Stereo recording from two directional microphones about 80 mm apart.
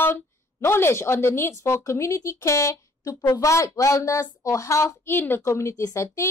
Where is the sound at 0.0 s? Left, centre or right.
Left.